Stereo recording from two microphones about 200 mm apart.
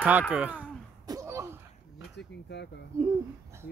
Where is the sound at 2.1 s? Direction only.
60° left (ahead or behind).